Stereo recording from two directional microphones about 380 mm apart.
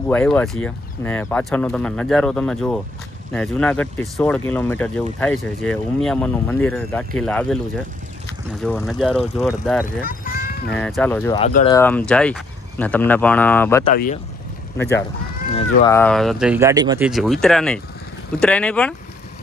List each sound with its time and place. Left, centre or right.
0.1 s speech: centre
8.6 s speech: centre
10.0 s a sound: left
10.7 s speech: centre
13.9 s speech: left
14.8 s speech: centre